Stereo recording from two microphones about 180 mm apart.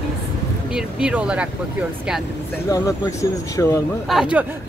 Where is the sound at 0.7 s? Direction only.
5° right (ahead or behind).